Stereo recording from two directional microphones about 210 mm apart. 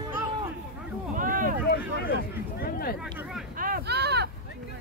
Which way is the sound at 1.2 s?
40° right (ahead or behind).